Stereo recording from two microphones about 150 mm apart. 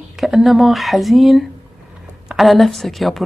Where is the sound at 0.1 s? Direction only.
Centre (ahead or behind).